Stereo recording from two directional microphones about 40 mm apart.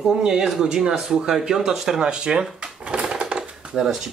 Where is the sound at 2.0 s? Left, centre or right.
Right.